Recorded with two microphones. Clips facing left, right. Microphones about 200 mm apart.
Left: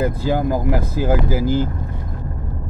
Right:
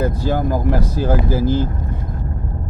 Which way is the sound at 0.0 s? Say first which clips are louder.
Even; 15° left (ahead or behind).